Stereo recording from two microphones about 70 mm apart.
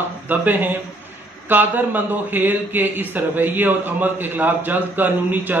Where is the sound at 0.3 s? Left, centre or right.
Right.